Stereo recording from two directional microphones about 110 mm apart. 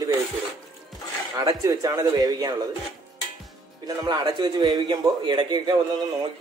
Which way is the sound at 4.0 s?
35° right (ahead or behind).